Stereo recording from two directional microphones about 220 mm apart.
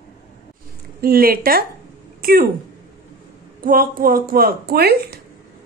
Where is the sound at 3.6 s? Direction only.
40° right (ahead or behind).